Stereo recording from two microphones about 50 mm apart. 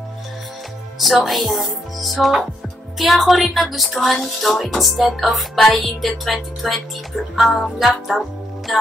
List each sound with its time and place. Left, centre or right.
0.9 s speech: centre
7.3 s music: centre